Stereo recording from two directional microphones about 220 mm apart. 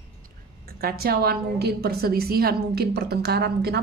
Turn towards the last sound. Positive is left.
turn(degrees=-45)  # may be behind; listen again after turning